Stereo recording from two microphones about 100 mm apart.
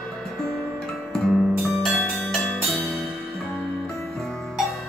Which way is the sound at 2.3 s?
5° left (ahead or behind).